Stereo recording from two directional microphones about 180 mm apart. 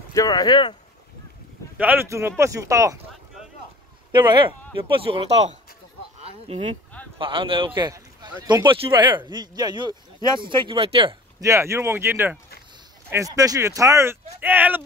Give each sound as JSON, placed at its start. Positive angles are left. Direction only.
{"t": 0.1, "sound": "speech", "side_deg": 20}
{"t": 1.8, "sound": "speech", "side_deg": -10}
{"t": 4.1, "sound": "speech", "side_deg": -25}
{"t": 11.4, "sound": "speech", "side_deg": -15}